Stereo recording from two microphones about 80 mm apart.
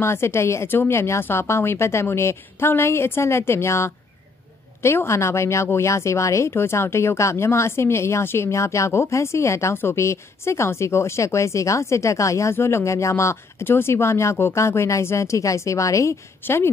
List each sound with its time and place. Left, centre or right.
0.0 s a woman's voice: left